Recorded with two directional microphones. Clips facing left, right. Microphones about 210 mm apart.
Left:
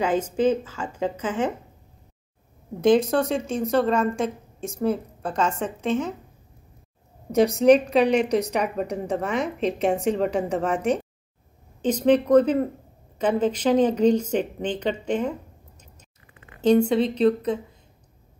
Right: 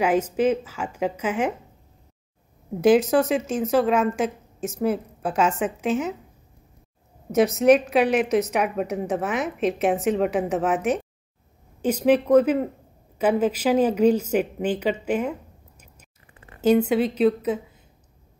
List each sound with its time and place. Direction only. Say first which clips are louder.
0.0 s a woman's voice: right 1 dB; 10° right (ahead or behind)
2.8 s a woman's voice: right 1 dB; 5° right (ahead or behind)
7.3 s a woman's voice: even; 5° right (ahead or behind)
16.3 s a sound: right 1 dB; 30° right (ahead or behind)
16.6 s a woman's voice: even; 5° right (ahead or behind)